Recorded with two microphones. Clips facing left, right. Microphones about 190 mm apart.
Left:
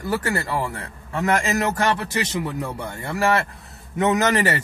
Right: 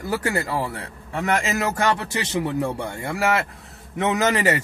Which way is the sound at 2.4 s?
20° right (ahead or behind).